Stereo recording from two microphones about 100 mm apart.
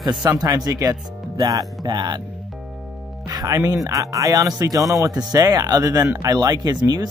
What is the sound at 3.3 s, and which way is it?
A man's voice, 35° right (ahead or behind).